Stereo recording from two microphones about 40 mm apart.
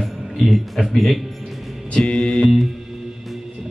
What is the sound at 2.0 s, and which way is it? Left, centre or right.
Music, left.